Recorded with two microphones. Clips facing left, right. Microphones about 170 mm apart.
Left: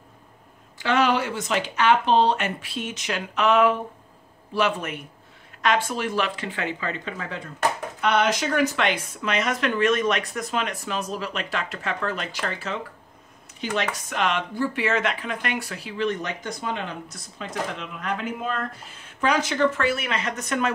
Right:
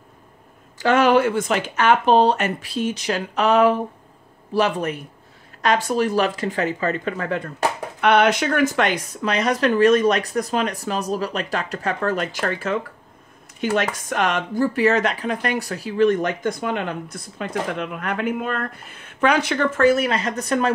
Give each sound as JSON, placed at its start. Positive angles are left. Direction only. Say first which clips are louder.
{"t": 0.7, "sound": "speech", "louder": "right 6 dB", "side_deg": -45}